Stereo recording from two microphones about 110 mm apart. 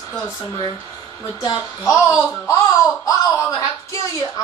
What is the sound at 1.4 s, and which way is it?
Speech, 35° left (ahead or behind).